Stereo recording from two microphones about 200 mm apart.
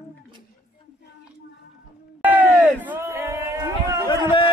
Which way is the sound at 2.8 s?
10° right (ahead or behind).